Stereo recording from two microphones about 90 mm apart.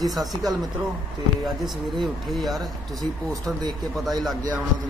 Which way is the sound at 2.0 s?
Centre (ahead or behind).